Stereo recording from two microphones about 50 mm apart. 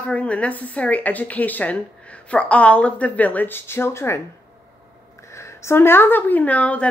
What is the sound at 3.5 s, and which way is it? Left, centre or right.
Speech, left.